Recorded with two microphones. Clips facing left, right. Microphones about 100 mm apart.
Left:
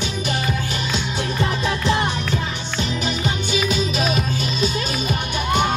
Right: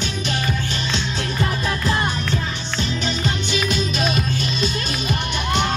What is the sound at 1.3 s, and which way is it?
Music, 25° left (ahead or behind).